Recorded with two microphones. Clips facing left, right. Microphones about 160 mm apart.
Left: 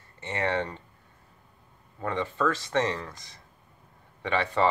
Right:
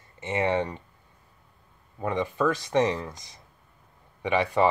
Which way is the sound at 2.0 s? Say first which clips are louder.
Right 2 dB; 15° right (ahead or behind).